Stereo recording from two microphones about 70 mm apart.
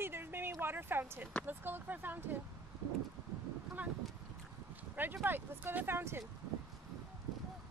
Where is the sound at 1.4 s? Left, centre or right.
Right.